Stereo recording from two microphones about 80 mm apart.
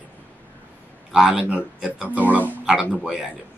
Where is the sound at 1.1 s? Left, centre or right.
Centre.